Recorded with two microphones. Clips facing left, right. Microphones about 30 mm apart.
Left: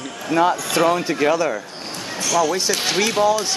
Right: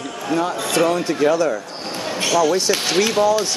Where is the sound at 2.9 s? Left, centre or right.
Centre.